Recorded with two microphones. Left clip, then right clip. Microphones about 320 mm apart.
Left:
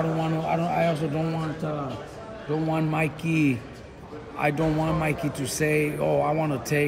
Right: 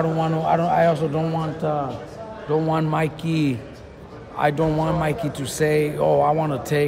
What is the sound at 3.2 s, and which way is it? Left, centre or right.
A man's voice, centre.